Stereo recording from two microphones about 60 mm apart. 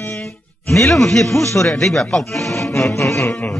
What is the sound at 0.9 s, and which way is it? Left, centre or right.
A man's voice, centre.